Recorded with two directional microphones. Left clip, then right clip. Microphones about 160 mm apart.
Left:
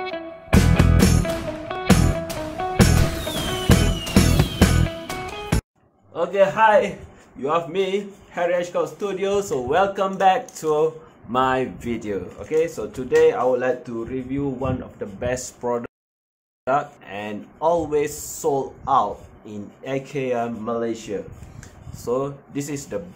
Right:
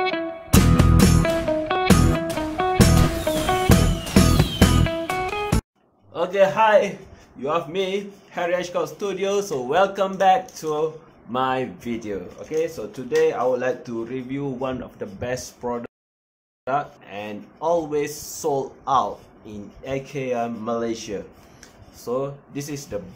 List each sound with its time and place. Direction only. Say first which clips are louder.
0.0 s music: right 6 dB; centre (ahead or behind)
6.1 s a man's voice: even; centre (ahead or behind)
10.4 s speech: left 4 dB; 25° left (ahead or behind); by 15.0 s 5° right (ahead or behind)
15.1 s speech: left 3 dB; 15° left (ahead or behind)
20.6 s speech: even; centre (ahead or behind)
22.0 s speech: left 2 dB; 25° left (ahead or behind)